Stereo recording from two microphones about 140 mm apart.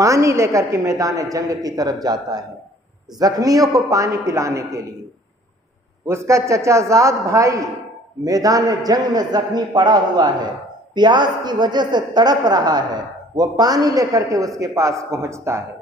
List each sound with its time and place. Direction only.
0.0 s a woman's voice: 20° right (ahead or behind)
6.0 s a woman's voice: 20° right (ahead or behind)